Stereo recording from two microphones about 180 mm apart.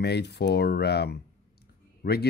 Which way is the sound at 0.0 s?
65° left (ahead or behind).